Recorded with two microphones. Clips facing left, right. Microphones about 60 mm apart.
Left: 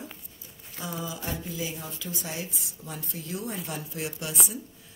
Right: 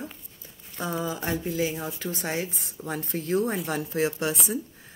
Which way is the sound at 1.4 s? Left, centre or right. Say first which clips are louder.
Right 7 dB; right.